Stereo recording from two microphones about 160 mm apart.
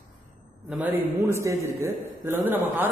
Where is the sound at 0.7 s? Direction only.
15° right (ahead or behind).